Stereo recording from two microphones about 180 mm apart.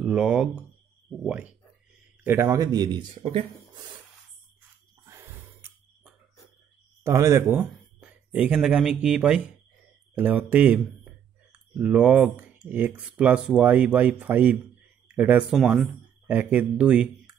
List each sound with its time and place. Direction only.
0.0 s speech: 5° right (ahead or behind); by 3.8 s 30° right (ahead or behind)
5.0 s a sound: 15° right (ahead or behind)
7.0 s speech: 15° right (ahead or behind)
7.5 s speech: 5° right (ahead or behind)